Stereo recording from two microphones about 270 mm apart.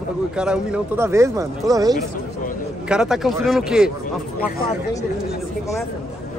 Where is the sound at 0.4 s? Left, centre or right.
Centre.